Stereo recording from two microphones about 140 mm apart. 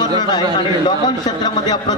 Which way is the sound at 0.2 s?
30° left (ahead or behind).